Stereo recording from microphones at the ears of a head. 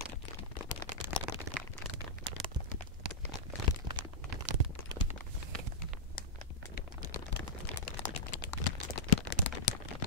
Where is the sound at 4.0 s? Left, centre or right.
Right.